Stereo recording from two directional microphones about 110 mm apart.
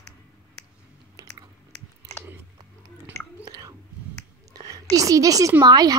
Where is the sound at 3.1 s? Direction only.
25° left (ahead or behind).